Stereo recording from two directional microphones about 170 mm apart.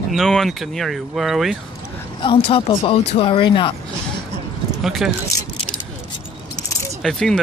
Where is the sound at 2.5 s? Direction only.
30° left (ahead or behind).